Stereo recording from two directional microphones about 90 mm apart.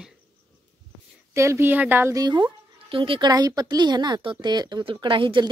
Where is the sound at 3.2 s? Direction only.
50° right (ahead or behind); by 5.4 s 70° right (ahead or behind).